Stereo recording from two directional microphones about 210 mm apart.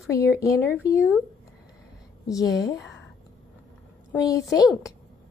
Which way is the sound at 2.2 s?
15° left (ahead or behind).